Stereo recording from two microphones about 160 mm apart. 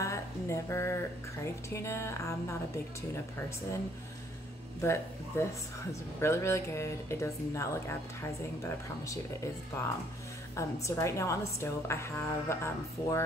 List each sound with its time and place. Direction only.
0.0 s speech: 20° left (ahead or behind)
4.8 s speech: 15° left (ahead or behind)
9.1 s speech: 15° left (ahead or behind)